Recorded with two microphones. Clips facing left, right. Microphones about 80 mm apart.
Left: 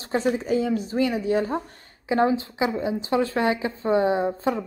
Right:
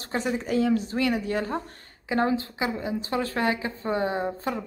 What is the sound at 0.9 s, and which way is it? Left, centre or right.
Speech, right.